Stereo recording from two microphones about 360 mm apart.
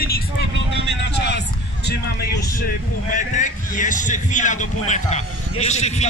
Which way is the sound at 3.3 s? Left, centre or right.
Left.